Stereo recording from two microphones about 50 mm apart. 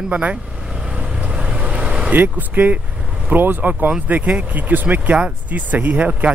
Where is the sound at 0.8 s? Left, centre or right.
Right.